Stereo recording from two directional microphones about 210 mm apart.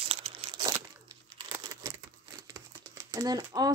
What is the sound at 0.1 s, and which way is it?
Crumpling, 25° right (ahead or behind).